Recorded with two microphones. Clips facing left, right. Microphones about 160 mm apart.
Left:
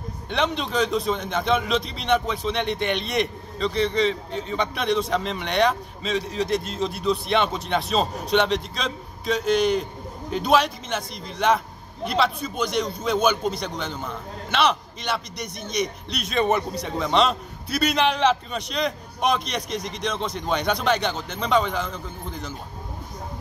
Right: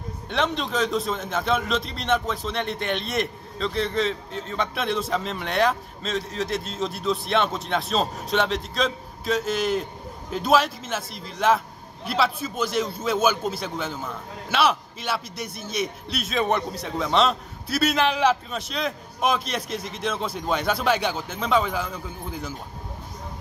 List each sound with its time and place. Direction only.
0.3 s a man's voice: centre (ahead or behind)